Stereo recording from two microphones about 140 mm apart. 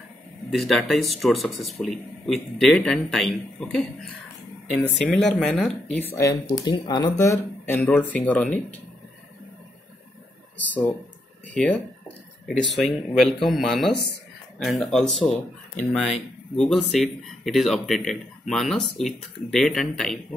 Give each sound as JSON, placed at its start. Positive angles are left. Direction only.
{"t": 0.5, "sound": "speech", "side_deg": 0}
{"t": 5.9, "sound": "speech", "side_deg": 15}
{"t": 7.2, "sound": "speech", "side_deg": 20}
{"t": 10.7, "sound": "speech", "side_deg": 10}